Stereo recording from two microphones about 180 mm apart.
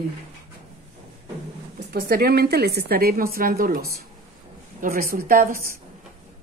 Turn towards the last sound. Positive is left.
turn(degrees=-50)  # may be behind; listen again after turning